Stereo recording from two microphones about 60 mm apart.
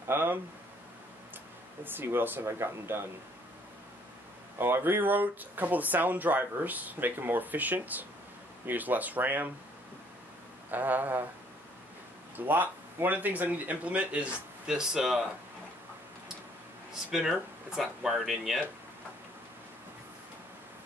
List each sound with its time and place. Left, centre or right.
0.1 s speech: right
1.9 s speech: right
2.4 s speech: right
4.6 s speech: right
10.7 s speech: right
12.4 s speech: right
14.7 s speech: centre
17.1 s speech: centre